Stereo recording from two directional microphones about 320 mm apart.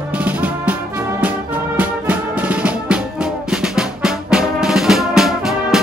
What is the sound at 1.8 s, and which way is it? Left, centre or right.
Music, centre.